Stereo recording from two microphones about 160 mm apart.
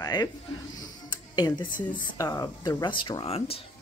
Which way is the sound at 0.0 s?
25° left (ahead or behind).